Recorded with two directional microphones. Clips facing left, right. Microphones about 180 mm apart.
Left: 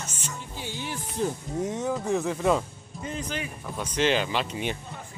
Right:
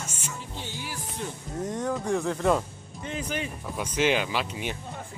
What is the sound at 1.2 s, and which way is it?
Speech, 30° left (ahead or behind).